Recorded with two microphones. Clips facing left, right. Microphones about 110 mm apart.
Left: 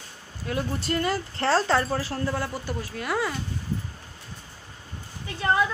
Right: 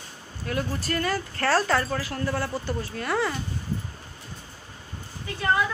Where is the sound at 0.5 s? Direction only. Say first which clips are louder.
Left 1 dB; 20° left (ahead or behind).